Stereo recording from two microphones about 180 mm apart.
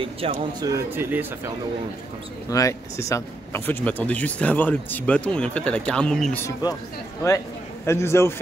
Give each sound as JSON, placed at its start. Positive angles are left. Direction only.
{"t": 0.0, "sound": "speech", "side_deg": -30}
{"t": 0.7, "sound": "speech", "side_deg": -15}
{"t": 2.5, "sound": "speech", "side_deg": 15}
{"t": 6.4, "sound": "a man's voice", "side_deg": 20}